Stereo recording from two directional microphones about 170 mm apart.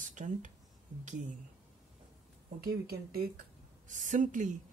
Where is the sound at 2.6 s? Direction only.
65° right (ahead or behind).